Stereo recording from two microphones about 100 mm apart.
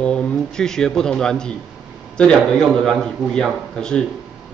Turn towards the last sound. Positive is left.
turn(degrees=5)  # may be behind; listen again after turning